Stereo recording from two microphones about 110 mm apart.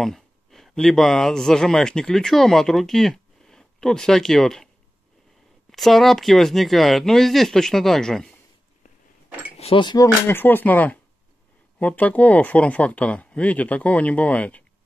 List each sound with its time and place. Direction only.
0.0 s speech: centre (ahead or behind)
5.7 s speech: centre (ahead or behind)
9.8 s speech: 40° left (ahead or behind)
10.2 s speech: 20° left (ahead or behind)